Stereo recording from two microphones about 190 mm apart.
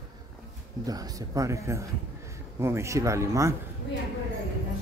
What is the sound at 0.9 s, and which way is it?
Speech, 20° right (ahead or behind).